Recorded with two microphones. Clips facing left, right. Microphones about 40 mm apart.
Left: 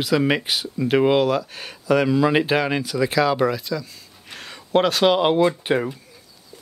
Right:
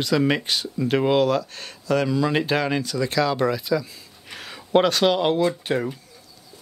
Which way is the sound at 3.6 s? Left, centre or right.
Centre.